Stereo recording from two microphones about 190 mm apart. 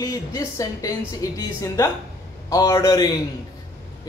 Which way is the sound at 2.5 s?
15° left (ahead or behind).